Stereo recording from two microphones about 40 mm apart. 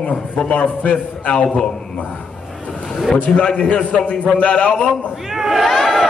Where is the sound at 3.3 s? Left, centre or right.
Left.